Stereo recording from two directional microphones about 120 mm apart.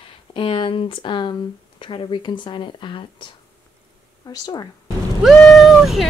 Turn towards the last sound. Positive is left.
turn(degrees=0)  # may be behind; listen again after turning